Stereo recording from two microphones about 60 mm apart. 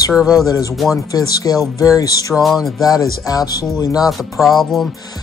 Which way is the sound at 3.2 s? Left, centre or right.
Left.